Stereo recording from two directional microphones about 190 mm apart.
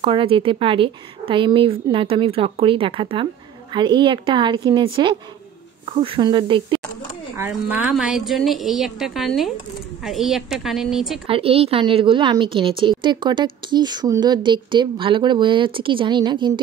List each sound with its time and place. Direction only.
0.0 s speech: 25° right (ahead or behind)
7.3 s a woman's voice: 10° right (ahead or behind)
11.2 s speech: 30° right (ahead or behind)